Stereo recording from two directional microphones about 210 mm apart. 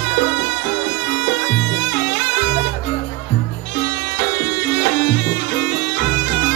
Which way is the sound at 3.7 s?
60° left (ahead or behind).